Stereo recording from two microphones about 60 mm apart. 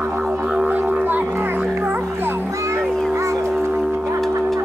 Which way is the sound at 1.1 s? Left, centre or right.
Right.